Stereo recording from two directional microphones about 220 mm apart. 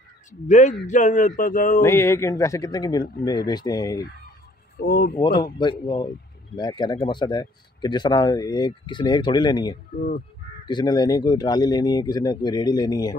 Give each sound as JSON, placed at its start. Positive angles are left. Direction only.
{"t": 0.3, "sound": "speech", "side_deg": 35}
{"t": 1.8, "sound": "speech", "side_deg": 10}
{"t": 4.7, "sound": "speech", "side_deg": 45}
{"t": 5.6, "sound": "speech", "side_deg": 20}
{"t": 9.9, "sound": "speech", "side_deg": 40}
{"t": 10.7, "sound": "speech", "side_deg": 20}